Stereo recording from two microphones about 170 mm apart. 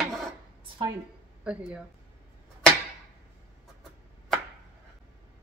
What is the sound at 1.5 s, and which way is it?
Speech, 5° right (ahead or behind).